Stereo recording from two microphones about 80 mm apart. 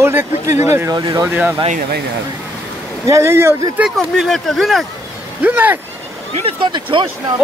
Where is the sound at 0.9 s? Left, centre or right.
Right.